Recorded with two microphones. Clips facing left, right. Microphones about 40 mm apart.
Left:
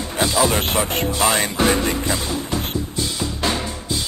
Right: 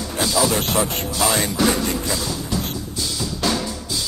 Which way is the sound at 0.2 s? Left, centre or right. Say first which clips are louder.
Left 2 dB; left.